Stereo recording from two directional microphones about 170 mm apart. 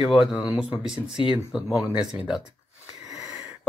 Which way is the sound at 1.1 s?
30° left (ahead or behind).